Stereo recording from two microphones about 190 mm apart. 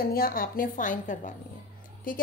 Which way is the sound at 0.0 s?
50° left (ahead or behind).